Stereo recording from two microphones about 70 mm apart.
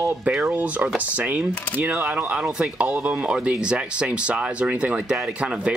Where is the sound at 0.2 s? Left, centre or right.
Centre.